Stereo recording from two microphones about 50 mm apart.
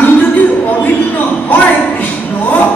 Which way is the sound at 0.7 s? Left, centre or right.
Left.